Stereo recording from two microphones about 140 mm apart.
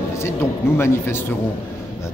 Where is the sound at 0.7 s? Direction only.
15° left (ahead or behind).